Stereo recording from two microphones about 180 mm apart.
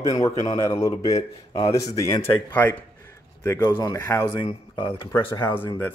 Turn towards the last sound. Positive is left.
turn(degrees=10)  # may be behind; listen again after turning